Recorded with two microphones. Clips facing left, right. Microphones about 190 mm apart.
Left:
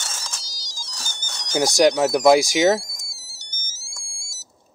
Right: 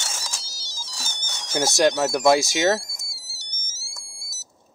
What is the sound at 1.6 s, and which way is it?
Speech, 15° left (ahead or behind).